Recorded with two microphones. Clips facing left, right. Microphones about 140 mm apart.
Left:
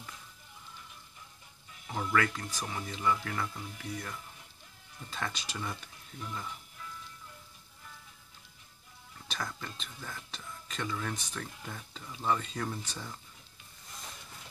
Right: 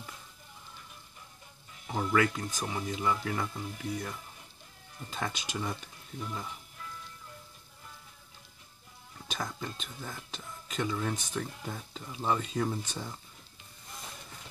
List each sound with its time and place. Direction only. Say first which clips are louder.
1.9 s speech: right 3 dB; 5° right (ahead or behind)
2.1 s speech: right 3 dB; 15° right (ahead or behind)
9.3 s speech: right 2 dB; 15° right (ahead or behind)